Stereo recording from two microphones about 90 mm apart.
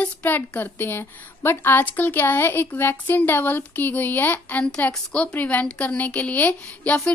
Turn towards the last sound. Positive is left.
turn(degrees=15)  # may be behind; listen again after turning